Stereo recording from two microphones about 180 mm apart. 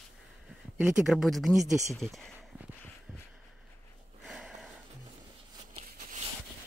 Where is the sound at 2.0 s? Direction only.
Centre (ahead or behind).